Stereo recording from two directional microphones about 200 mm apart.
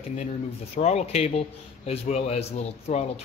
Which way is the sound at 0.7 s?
35° left (ahead or behind).